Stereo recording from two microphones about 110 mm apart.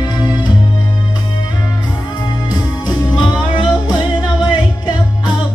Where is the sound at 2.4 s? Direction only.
40° left (ahead or behind).